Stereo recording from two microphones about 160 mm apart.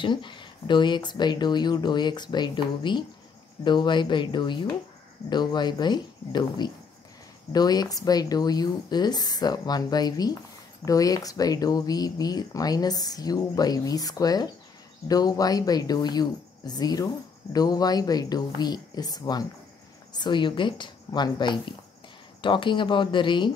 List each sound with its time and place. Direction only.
0.0 s speech: 30° left (ahead or behind)